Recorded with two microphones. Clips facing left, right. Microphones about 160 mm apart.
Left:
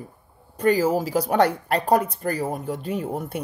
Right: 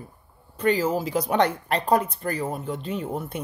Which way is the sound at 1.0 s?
35° left (ahead or behind).